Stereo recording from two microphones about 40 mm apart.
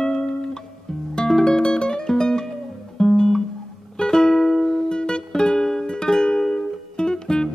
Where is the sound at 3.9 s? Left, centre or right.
Centre.